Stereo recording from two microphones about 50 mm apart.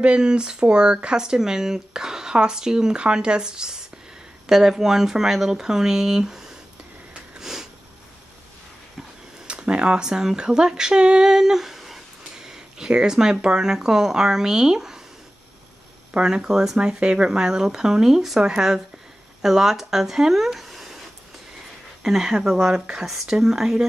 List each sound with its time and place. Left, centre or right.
0.0 s speech: centre
7.3 s sniff: centre
9.5 s speech: right
16.1 s speech: centre
22.0 s speech: centre